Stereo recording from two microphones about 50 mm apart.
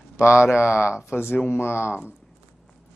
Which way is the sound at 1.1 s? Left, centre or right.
Left.